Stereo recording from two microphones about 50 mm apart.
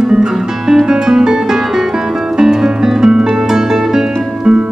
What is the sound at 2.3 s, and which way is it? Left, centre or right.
Music, centre.